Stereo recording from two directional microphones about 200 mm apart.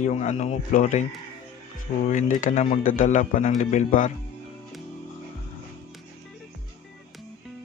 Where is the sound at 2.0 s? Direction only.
40° left (ahead or behind).